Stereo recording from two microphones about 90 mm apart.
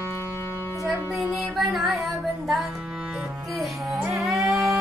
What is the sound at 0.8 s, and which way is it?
Speech, centre (ahead or behind).